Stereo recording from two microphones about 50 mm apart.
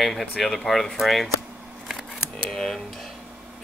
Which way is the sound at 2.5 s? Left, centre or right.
Centre.